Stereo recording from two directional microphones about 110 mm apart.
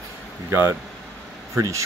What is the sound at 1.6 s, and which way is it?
Speech, 30° right (ahead or behind).